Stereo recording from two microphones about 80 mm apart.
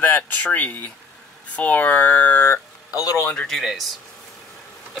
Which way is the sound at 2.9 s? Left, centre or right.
Left.